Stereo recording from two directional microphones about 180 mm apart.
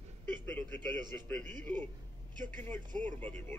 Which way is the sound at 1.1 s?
10° left (ahead or behind).